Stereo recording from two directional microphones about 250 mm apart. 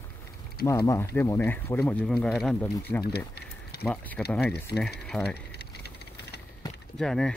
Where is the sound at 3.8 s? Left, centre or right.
Centre.